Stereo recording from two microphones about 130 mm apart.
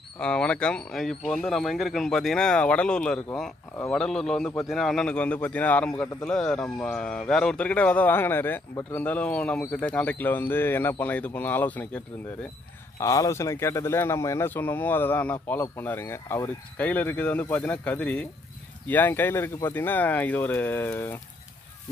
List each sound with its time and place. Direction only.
0.2 s speech: 10° left (ahead or behind)
13.0 s speech: 25° left (ahead or behind)